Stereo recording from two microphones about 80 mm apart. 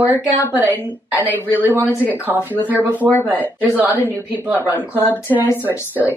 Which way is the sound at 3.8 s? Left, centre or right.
Right.